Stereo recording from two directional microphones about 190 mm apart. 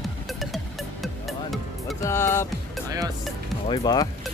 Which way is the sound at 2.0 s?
15° left (ahead or behind).